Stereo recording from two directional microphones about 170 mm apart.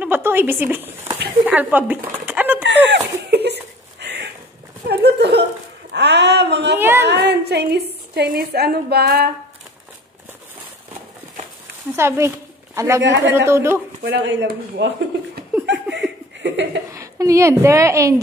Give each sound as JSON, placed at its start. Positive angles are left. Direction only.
{"t": 0.0, "sound": "a woman's voice", "side_deg": -10}
{"t": 2.6, "sound": "laughter", "side_deg": -90}
{"t": 4.0, "sound": "a sound", "side_deg": -80}
{"t": 5.9, "sound": "a sound", "side_deg": -90}
{"t": 6.8, "sound": "a sound", "side_deg": -15}
{"t": 7.1, "sound": "a woman's voice", "side_deg": -75}
{"t": 11.9, "sound": "a man's voice", "side_deg": -15}
{"t": 13.0, "sound": "speech", "side_deg": -90}
{"t": 13.5, "sound": "speech", "side_deg": -15}
{"t": 14.0, "sound": "speech", "side_deg": -90}
{"t": 15.6, "sound": "laughter", "side_deg": -90}
{"t": 16.9, "sound": "a woman's voice", "side_deg": -20}